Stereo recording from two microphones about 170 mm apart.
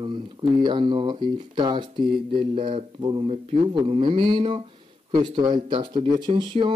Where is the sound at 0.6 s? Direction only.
25° right (ahead or behind).